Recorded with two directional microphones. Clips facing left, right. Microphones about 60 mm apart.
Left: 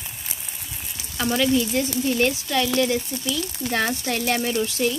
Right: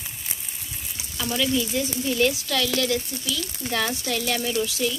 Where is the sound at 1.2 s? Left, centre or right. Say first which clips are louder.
Left 4 dB; left.